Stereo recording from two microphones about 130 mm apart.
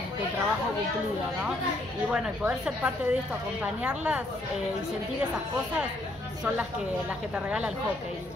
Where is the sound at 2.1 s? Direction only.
10° right (ahead or behind).